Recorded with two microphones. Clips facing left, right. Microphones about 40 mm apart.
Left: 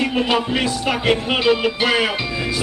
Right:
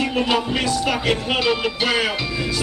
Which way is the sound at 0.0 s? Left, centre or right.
Centre.